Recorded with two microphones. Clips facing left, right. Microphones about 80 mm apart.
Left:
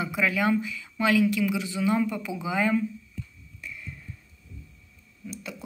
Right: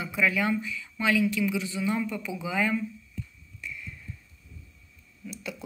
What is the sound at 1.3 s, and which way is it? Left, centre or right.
Speech, left.